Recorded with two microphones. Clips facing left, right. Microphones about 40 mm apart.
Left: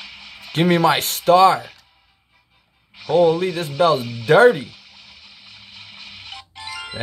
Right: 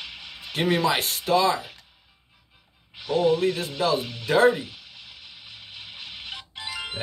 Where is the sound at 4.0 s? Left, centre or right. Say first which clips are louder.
Left 6 dB; left.